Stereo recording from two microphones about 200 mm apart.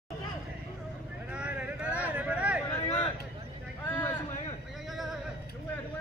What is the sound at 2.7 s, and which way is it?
Vehicle, 5° left (ahead or behind).